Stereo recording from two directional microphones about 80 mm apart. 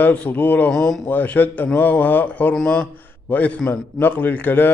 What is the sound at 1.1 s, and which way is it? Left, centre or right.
A man's voice, left.